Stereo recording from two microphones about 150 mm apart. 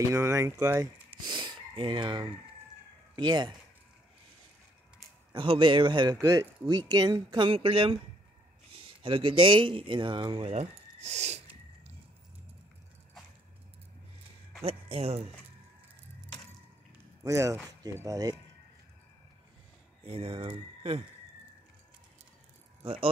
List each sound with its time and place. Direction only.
0.0 s speech: 20° right (ahead or behind)
1.3 s speech: 35° right (ahead or behind)
5.3 s speech: 35° right (ahead or behind)
6.2 s speech: 20° right (ahead or behind); by 8.0 s 35° right (ahead or behind)
9.0 s speech: 35° right (ahead or behind)
10.5 s speech: 50° right (ahead or behind)
14.6 s speech: 45° right (ahead or behind)
17.2 s speech: 20° right (ahead or behind)
20.0 s speech: 40° right (ahead or behind)